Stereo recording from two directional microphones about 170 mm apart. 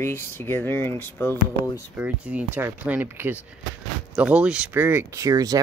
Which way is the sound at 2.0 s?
10° right (ahead or behind).